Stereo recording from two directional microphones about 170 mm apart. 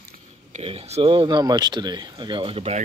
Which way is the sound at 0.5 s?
35° right (ahead or behind).